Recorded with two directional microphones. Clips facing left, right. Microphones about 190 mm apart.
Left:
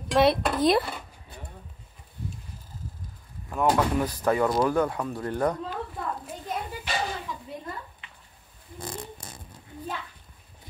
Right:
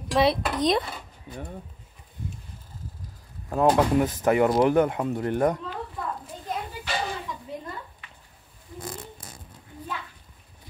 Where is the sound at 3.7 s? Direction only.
20° right (ahead or behind).